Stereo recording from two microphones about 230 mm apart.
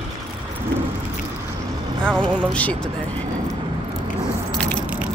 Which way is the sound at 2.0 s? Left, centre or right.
Centre.